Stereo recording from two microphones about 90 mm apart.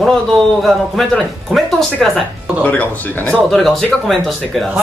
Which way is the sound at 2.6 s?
20° left (ahead or behind).